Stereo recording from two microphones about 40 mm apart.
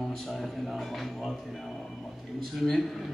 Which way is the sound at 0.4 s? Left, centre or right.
Centre.